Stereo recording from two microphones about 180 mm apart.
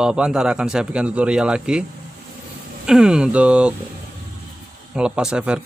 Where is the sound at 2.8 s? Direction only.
5° right (ahead or behind).